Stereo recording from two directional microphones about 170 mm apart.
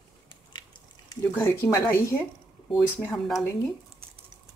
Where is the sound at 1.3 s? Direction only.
15° left (ahead or behind).